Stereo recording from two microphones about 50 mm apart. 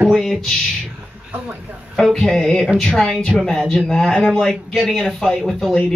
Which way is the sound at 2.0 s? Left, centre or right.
Centre.